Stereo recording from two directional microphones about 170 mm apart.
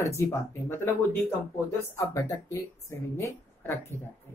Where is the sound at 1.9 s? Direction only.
20° left (ahead or behind).